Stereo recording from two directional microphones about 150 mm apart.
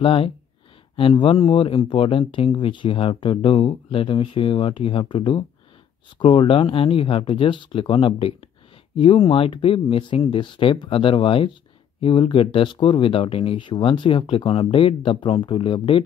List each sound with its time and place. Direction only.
0.0 s speech: 35° left (ahead or behind)